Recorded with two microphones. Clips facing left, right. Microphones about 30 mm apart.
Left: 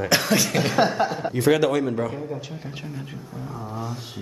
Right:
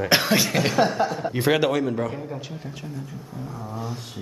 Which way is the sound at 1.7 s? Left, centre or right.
Centre.